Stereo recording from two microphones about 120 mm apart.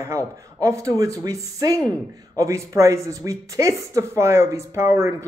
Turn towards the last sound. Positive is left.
turn(degrees=-25)  # may be behind; listen again after turning